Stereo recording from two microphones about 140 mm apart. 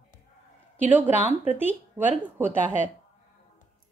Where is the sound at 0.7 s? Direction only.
15° right (ahead or behind).